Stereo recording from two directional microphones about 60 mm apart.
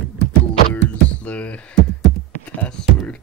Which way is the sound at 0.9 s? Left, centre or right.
Left.